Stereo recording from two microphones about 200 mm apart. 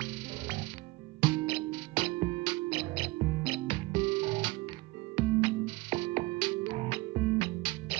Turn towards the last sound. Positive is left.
turn(degrees=-25)  # may be behind; listen again after turning